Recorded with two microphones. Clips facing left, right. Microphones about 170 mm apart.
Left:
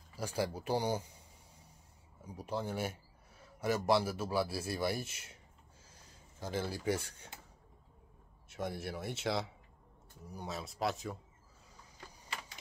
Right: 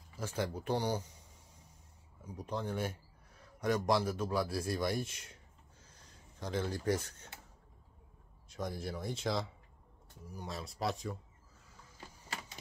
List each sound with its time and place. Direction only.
0.2 s speech: 10° left (ahead or behind)
2.2 s a man's voice: 10° left (ahead or behind)
8.6 s a man's voice: 5° left (ahead or behind)
10.4 s a man's voice: centre (ahead or behind)